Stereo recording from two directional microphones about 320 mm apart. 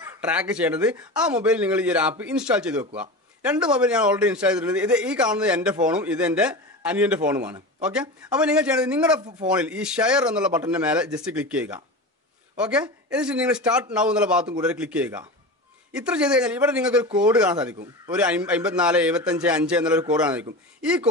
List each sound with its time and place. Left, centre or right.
0.2 s a man's voice: centre